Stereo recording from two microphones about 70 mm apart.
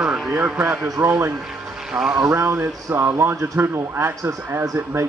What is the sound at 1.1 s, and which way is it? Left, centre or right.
Speech, right.